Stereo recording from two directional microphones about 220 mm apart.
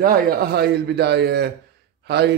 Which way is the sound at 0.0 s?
45° right (ahead or behind).